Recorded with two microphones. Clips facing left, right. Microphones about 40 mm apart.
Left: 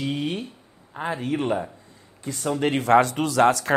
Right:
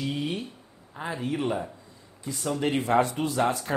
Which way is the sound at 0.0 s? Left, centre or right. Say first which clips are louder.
Left 3 dB; left.